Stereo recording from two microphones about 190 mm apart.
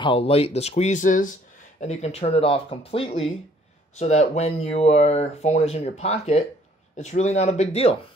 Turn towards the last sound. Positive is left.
turn(degrees=35)  # may be behind; listen again after turning